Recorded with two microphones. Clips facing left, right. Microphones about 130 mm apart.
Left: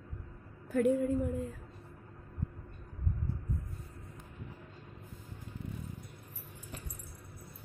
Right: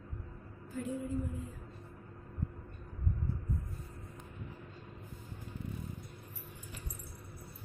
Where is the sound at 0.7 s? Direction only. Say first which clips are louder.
Left 9 dB; 65° left (ahead or behind).